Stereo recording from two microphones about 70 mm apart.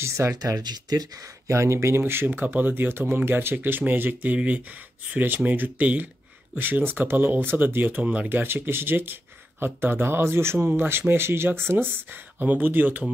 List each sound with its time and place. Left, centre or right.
0.0 s speech: right
0.4 s speech: right
1.5 s speech: right; by 8.4 s centre
8.4 s speech: right
12.1 s speech: right